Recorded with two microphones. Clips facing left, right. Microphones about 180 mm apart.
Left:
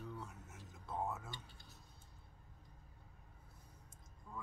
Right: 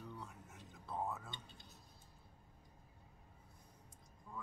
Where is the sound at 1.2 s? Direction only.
20° right (ahead or behind).